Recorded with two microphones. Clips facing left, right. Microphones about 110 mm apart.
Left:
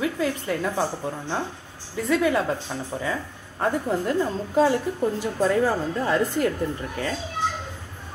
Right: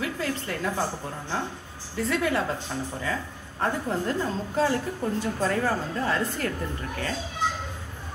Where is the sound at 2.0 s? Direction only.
15° left (ahead or behind).